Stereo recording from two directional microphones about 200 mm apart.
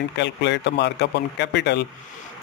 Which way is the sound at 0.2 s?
60° left (ahead or behind).